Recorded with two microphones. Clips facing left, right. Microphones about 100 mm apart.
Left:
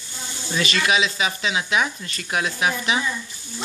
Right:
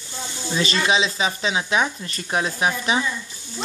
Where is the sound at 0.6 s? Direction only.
30° right (ahead or behind).